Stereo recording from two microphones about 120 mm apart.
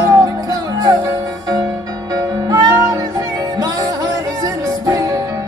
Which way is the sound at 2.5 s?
30° right (ahead or behind).